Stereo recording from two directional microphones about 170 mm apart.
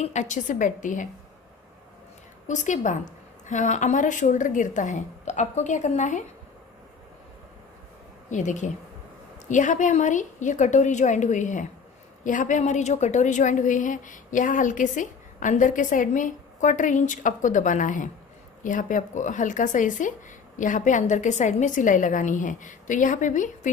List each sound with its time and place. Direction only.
0.0 s a woman's voice: 45° left (ahead or behind)
2.4 s a woman's voice: 45° left (ahead or behind)
8.3 s a woman's voice: 45° left (ahead or behind)